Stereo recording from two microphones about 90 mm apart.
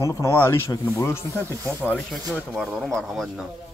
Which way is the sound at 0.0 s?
30° left (ahead or behind).